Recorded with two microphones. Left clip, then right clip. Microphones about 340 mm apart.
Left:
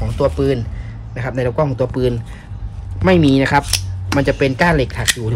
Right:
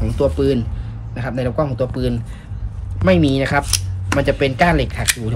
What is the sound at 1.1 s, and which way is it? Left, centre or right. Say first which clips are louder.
Speech: left 2 dB; left.